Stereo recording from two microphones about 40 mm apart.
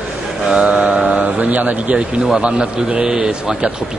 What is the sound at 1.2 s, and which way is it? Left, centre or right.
Speech, right.